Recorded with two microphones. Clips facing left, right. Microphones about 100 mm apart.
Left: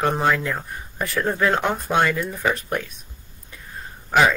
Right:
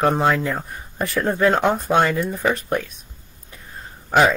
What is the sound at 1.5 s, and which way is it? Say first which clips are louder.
Speech: right 3 dB; 25° right (ahead or behind).